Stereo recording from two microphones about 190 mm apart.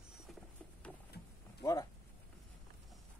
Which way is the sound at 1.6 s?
20° left (ahead or behind).